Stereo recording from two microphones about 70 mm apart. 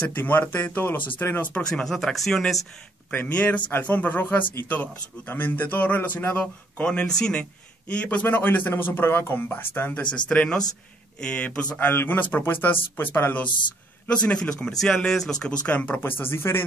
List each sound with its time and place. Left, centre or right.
0.0 s speech: left
1.7 s speech: centre
3.1 s speech: left
6.4 s speech: centre
10.0 s speech: centre
11.8 s speech: left
14.0 s speech: centre
16.0 s speech: left